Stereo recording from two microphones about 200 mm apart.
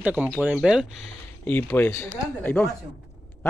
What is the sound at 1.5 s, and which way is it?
Speech, 10° left (ahead or behind).